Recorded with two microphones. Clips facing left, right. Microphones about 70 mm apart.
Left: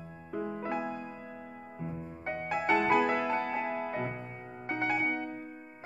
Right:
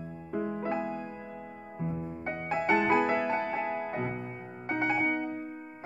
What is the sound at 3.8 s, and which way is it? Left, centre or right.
Music, centre.